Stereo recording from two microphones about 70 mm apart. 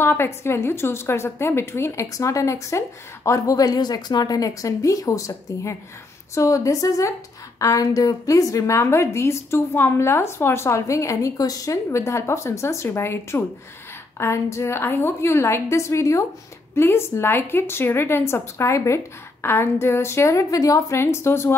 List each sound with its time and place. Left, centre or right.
0.0 s a woman's voice: left
2.1 s a woman's voice: left
16.7 s a woman's voice: left